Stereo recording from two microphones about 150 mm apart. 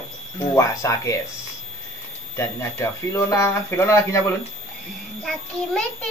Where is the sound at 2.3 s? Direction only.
20° left (ahead or behind).